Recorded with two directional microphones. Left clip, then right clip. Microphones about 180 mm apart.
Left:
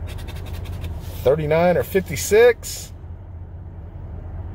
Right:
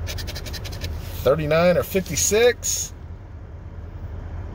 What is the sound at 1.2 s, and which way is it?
Speech, 15° left (ahead or behind).